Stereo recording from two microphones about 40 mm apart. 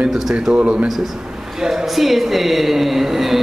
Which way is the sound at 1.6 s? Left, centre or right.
Centre.